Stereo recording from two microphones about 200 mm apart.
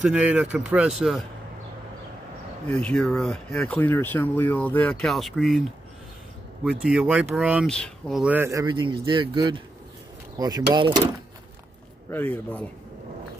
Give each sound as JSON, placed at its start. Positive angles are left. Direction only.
{"t": 0.0, "sound": "speech", "side_deg": -5}
{"t": 2.7, "sound": "speech", "side_deg": 5}
{"t": 6.6, "sound": "speech", "side_deg": -5}
{"t": 12.1, "sound": "speech", "side_deg": 10}